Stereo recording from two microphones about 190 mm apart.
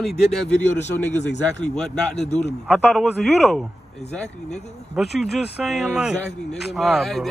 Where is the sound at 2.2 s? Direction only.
35° left (ahead or behind).